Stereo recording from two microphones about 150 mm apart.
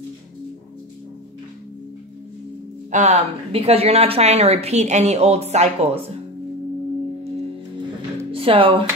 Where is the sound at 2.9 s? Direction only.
50° right (ahead or behind).